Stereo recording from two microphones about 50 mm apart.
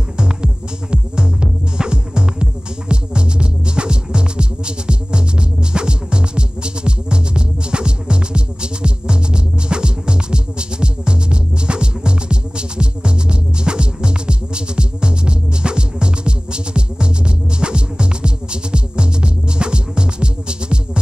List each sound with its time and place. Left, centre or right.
1.1 s music: centre